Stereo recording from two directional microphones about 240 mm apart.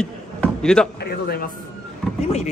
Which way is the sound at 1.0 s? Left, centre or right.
Left.